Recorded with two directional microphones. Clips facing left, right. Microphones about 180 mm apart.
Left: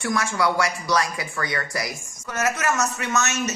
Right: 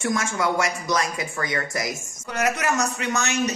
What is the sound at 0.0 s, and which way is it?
A man's voice, 20° right (ahead or behind).